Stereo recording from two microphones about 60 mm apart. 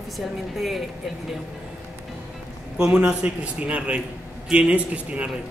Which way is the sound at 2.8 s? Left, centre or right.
Centre.